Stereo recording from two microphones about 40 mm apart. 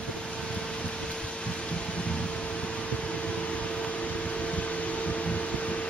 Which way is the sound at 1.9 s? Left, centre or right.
Left.